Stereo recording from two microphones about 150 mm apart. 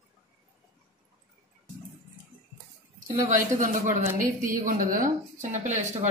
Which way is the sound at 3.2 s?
55° right (ahead or behind).